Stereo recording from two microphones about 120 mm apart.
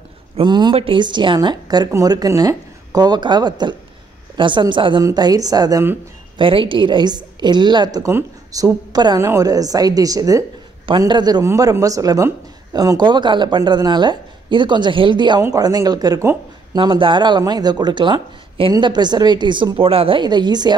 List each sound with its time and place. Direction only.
0.4 s a woman's voice: 40° right (ahead or behind)
6.3 s a woman's voice: 45° right (ahead or behind)
11.4 s a woman's voice: 25° right (ahead or behind)